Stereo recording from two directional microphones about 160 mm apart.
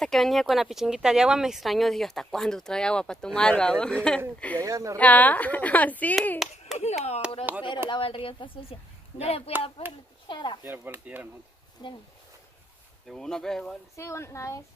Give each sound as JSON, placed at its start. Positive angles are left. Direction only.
{"t": 0.0, "sound": "speech", "side_deg": 0}
{"t": 4.6, "sound": "speech", "side_deg": -20}
{"t": 4.9, "sound": "speech", "side_deg": 10}
{"t": 6.8, "sound": "speech", "side_deg": 40}
{"t": 7.5, "sound": "speech", "side_deg": -10}
{"t": 7.9, "sound": "a woman's voice", "side_deg": 35}
{"t": 10.2, "sound": "speech", "side_deg": 30}
{"t": 10.6, "sound": "speech", "side_deg": -15}
{"t": 11.8, "sound": "speech", "side_deg": 25}
{"t": 13.1, "sound": "speech", "side_deg": 5}
{"t": 13.9, "sound": "speech", "side_deg": 15}